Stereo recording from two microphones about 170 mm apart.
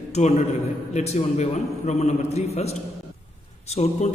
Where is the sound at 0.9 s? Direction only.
40° left (ahead or behind).